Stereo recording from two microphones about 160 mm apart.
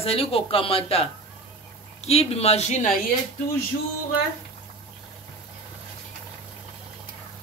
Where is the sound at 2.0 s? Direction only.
40° left (ahead or behind).